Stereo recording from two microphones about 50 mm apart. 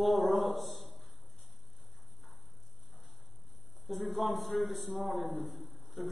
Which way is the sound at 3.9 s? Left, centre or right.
Centre.